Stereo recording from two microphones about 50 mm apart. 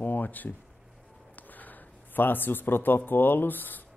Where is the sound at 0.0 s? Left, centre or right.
Left.